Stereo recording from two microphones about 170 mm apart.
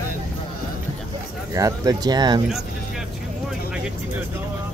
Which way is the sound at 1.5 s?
20° right (ahead or behind).